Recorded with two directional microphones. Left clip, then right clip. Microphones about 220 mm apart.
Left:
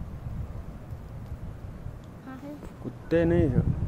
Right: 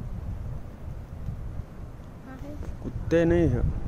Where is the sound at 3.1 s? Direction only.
10° right (ahead or behind).